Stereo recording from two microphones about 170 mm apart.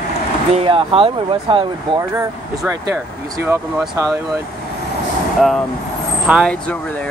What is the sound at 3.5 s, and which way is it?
Speech, 20° right (ahead or behind).